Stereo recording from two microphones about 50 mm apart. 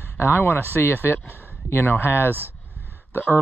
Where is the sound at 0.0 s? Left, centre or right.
Left.